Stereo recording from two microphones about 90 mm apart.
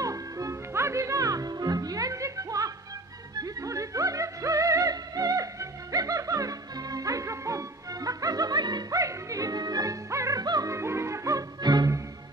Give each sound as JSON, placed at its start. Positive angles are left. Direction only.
{"t": 0.0, "sound": "music", "side_deg": -40}
{"t": 9.0, "sound": "music", "side_deg": -40}
{"t": 10.4, "sound": "music", "side_deg": -50}
{"t": 10.7, "sound": "music", "side_deg": -30}